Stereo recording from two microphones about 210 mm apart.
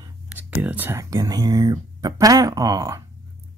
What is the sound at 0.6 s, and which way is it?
Speech, 10° right (ahead or behind).